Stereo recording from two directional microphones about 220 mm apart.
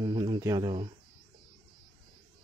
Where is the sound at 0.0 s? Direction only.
20° right (ahead or behind).